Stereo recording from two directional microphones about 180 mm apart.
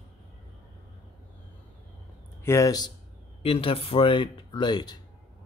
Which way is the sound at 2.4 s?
15° left (ahead or behind).